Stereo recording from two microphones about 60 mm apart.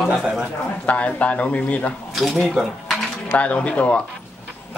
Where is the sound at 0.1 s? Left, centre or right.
Centre.